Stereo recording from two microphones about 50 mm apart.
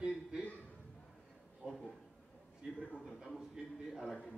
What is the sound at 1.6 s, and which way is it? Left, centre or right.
Speech, right.